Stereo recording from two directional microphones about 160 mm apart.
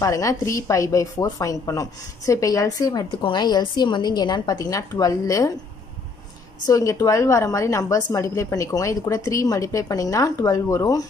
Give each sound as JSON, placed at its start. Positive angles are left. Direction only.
{"t": 0.0, "sound": "a woman's voice", "side_deg": 20}
{"t": 6.6, "sound": "a woman's voice", "side_deg": 20}